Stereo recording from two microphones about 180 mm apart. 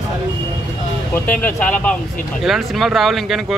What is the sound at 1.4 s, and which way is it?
Speech, 10° left (ahead or behind).